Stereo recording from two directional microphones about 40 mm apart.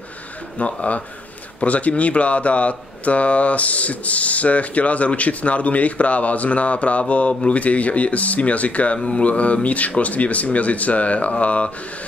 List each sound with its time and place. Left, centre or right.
0.6 s speech: left